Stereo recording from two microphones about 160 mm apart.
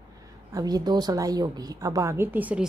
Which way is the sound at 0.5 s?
25° right (ahead or behind).